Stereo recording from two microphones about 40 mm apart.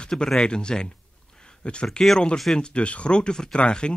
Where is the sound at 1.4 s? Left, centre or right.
Left.